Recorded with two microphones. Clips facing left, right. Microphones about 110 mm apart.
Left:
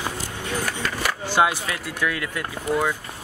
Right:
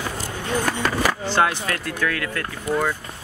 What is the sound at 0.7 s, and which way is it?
Vehicle, 40° right (ahead or behind).